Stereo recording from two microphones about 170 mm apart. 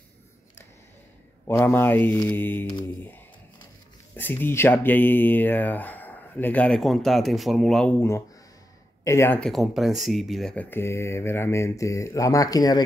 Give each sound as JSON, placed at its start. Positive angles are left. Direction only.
{"t": 1.5, "sound": "speech", "side_deg": 15}
{"t": 4.2, "sound": "speech", "side_deg": 10}
{"t": 9.0, "sound": "speech", "side_deg": 15}
{"t": 9.4, "sound": "speech", "side_deg": 0}